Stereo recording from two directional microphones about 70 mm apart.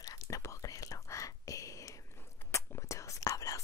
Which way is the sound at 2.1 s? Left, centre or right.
Left.